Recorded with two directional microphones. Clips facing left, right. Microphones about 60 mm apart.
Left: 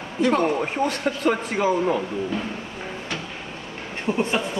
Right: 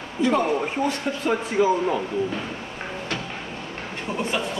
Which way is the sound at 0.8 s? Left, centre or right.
Left.